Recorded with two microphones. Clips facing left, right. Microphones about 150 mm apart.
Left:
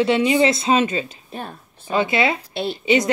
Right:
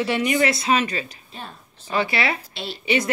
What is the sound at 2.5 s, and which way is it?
Speech, 55° left (ahead or behind).